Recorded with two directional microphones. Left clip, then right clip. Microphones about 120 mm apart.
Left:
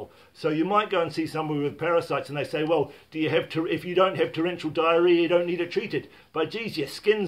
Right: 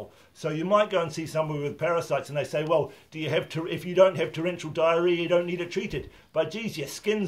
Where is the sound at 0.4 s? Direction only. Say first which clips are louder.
Even; 20° left (ahead or behind).